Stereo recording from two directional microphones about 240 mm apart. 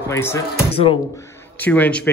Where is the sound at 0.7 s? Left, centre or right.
Left.